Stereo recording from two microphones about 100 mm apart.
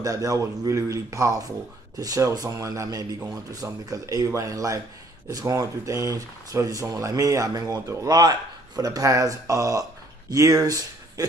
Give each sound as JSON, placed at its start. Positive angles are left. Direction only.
{"t": 0.0, "sound": "speech", "side_deg": -35}